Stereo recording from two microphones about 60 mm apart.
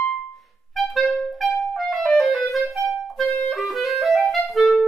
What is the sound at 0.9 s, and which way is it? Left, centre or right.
Clarinet, centre.